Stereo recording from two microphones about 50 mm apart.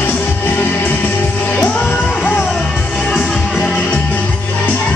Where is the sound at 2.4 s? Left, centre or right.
Centre.